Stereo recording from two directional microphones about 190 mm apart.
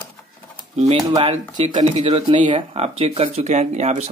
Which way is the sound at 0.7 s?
30° right (ahead or behind).